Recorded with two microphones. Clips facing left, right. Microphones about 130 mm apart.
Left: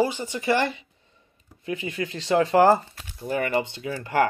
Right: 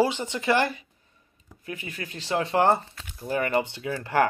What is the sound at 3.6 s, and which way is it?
Speech, 5° right (ahead or behind).